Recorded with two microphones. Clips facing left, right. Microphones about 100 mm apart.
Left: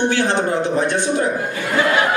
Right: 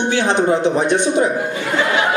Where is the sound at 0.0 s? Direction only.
20° right (ahead or behind).